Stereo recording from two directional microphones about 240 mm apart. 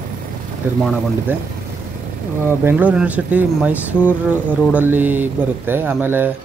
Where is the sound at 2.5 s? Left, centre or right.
Centre.